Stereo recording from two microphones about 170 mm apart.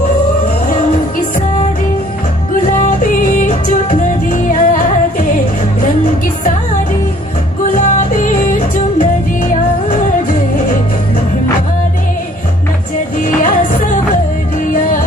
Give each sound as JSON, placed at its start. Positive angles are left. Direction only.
{"t": 2.6, "sound": "music", "side_deg": 55}
{"t": 7.7, "sound": "music", "side_deg": 50}
{"t": 13.2, "sound": "music", "side_deg": 55}